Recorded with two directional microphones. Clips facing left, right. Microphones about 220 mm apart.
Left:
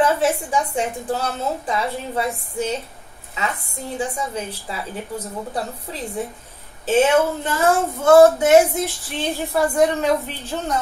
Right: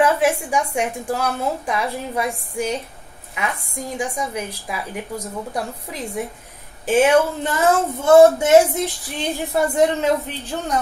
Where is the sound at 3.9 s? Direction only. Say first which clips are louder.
Even; 15° right (ahead or behind).